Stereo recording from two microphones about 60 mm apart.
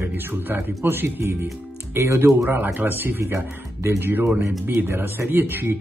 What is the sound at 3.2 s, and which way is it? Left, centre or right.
Speech, right.